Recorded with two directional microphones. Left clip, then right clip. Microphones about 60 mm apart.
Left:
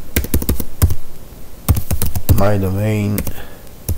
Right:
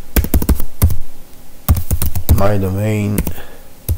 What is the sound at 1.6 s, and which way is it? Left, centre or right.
Typing, centre.